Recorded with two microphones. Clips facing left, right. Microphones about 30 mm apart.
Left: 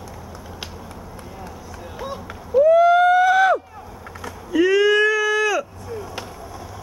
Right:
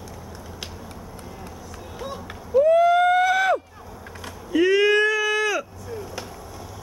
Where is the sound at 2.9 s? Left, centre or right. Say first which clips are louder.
Left 3 dB; centre.